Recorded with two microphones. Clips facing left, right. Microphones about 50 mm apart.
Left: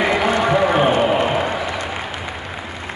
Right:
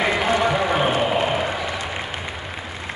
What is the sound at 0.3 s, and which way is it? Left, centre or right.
Run, centre.